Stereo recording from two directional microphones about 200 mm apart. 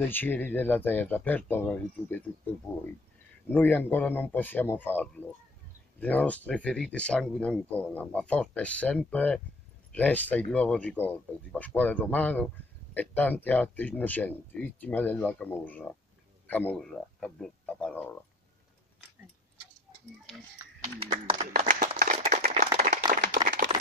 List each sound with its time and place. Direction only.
0.1 s speech: 10° left (ahead or behind)
3.4 s speech: 10° left (ahead or behind)
20.8 s speech: 25° right (ahead or behind)
21.4 s clapping: 45° right (ahead or behind)